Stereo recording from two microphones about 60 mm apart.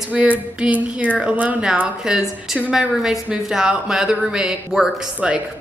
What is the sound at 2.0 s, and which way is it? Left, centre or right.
A woman's voice, centre.